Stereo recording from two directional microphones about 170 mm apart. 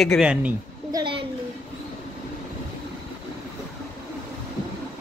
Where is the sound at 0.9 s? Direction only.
25° right (ahead or behind).